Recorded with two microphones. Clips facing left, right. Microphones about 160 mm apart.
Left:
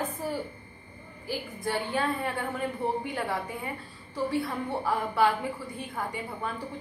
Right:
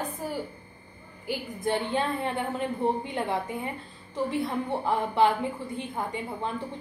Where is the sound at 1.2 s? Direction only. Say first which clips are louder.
Right 3 dB; 20° right (ahead or behind).